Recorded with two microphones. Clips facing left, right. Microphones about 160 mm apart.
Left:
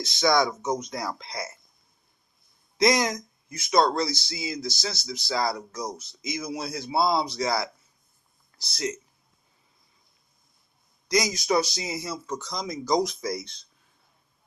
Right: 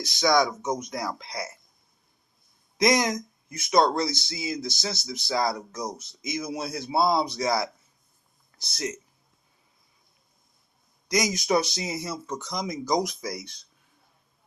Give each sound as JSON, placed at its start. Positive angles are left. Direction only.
{"t": 0.0, "sound": "speech", "side_deg": -15}
{"t": 2.8, "sound": "speech", "side_deg": -20}
{"t": 11.1, "sound": "speech", "side_deg": -20}